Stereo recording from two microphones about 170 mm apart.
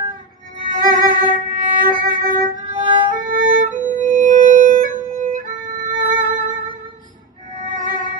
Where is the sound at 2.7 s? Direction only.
30° right (ahead or behind).